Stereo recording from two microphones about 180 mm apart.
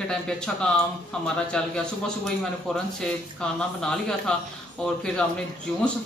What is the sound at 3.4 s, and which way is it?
Speech, 5° left (ahead or behind).